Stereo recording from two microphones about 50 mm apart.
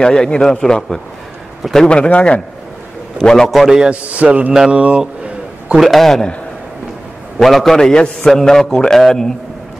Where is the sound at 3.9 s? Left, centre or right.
Right.